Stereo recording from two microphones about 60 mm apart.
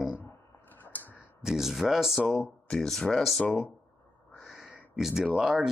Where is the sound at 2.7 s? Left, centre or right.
Centre.